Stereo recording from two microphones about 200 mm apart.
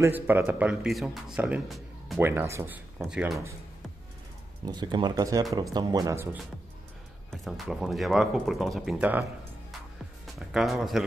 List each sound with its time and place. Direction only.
0.0 s speech: 10° right (ahead or behind)
4.6 s speech: 20° right (ahead or behind)
7.2 s speech: centre (ahead or behind)
10.5 s speech: centre (ahead or behind)